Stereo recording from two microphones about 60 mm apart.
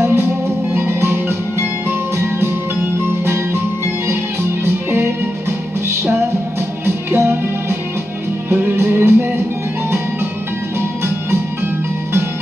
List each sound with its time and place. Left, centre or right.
0.0 s music: right
4.6 s music: right
7.1 s music: right
8.5 s music: right